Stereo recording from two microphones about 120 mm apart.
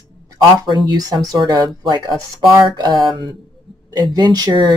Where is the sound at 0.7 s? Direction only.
35° right (ahead or behind).